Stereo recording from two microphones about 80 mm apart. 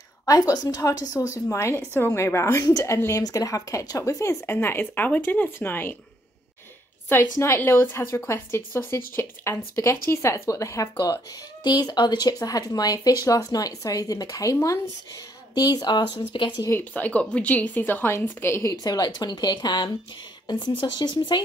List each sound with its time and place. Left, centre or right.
0.2 s speech: left
4.5 s speech: left
7.1 s speech: left
11.6 s speech: left
15.5 s speech: left
16.3 s speech: left
16.9 s speech: centre
18.8 s speech: left